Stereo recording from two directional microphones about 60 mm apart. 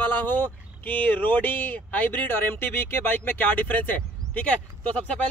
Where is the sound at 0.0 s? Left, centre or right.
Left.